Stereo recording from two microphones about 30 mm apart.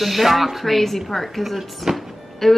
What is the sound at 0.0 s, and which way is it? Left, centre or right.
A woman's voice, centre.